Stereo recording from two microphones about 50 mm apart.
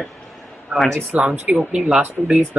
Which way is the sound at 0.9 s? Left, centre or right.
Right.